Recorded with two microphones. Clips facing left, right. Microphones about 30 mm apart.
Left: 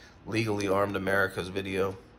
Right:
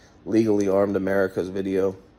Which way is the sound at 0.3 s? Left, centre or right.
Left.